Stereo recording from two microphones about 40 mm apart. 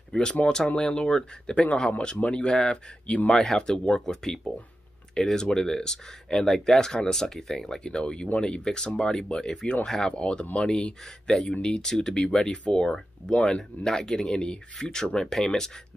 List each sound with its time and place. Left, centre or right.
0.1 s speech: left
10.1 s speech: left
10.7 s speech: left